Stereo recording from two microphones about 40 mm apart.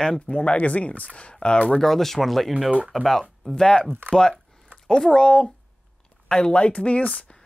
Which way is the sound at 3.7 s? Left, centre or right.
Left.